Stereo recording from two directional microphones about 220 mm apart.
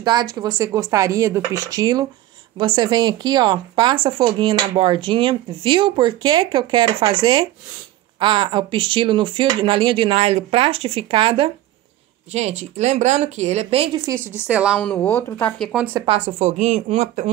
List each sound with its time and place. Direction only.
0.0 s speech: 20° right (ahead or behind)
14.5 s speech: 5° right (ahead or behind)
14.8 s speech: 5° left (ahead or behind)
15.6 s speech: 5° right (ahead or behind)
16.1 s speech: 30° right (ahead or behind)